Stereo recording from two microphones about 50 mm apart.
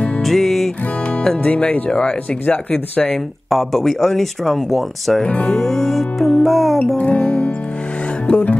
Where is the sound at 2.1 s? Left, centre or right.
Left.